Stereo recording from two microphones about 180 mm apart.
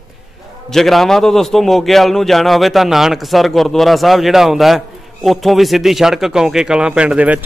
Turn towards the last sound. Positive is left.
turn(degrees=-5)  # may be behind; listen again after turning